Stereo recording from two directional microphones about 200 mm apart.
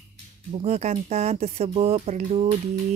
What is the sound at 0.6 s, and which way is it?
Speech, 35° right (ahead or behind).